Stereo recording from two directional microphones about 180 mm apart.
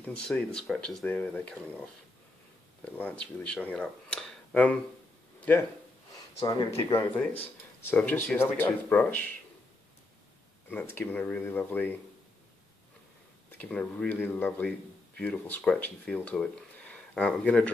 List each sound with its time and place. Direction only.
0.0 s speech: 5° left (ahead or behind)
2.8 s speech: 10° left (ahead or behind)
6.4 s speech: 25° left (ahead or behind)
6.9 s speech: 10° left (ahead or behind)
10.7 s speech: 10° left (ahead or behind)
13.5 s speech: 5° left (ahead or behind)